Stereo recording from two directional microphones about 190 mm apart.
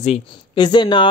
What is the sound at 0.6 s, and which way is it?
Speech, 25° left (ahead or behind).